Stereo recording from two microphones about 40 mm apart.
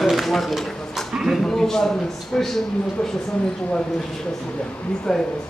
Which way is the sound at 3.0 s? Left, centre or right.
Left.